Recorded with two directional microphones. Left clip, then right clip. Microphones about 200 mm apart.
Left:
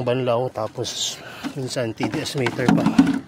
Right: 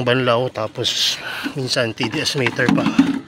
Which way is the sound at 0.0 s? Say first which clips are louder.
Right 4 dB; 5° right (ahead or behind).